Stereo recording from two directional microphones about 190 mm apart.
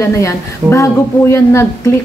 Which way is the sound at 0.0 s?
15° left (ahead or behind).